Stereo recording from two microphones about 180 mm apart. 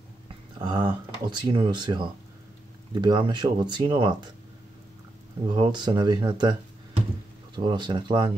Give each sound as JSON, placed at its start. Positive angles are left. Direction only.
{"t": 0.6, "sound": "speech", "side_deg": -25}
{"t": 5.5, "sound": "speech", "side_deg": -25}